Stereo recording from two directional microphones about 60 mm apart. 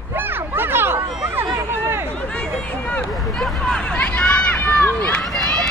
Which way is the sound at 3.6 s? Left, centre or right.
Centre.